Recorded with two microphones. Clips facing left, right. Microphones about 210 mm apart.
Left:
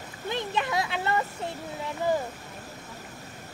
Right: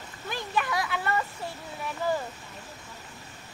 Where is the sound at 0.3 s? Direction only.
20° left (ahead or behind).